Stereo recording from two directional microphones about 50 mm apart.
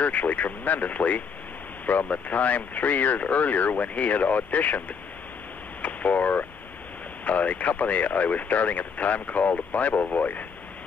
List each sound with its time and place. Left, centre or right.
0.0 s speech: left
5.8 s a sound: left
7.2 s speech: left